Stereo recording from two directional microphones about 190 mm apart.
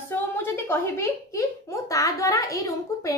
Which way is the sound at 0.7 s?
15° left (ahead or behind).